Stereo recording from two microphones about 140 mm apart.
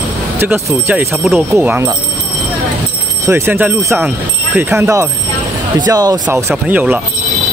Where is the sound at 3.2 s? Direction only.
20° right (ahead or behind).